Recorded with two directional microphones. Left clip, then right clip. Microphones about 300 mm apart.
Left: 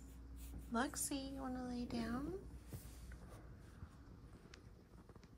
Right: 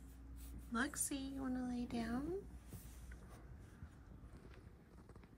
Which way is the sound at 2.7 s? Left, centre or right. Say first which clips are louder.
Left 1 dB; centre.